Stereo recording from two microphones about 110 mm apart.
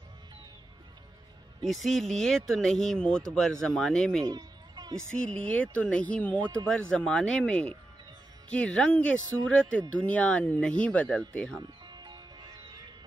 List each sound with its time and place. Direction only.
1.6 s speech: centre (ahead or behind)
4.2 s a sound: 40° right (ahead or behind)
4.9 s speech: 10° left (ahead or behind)
11.8 s music: 40° right (ahead or behind)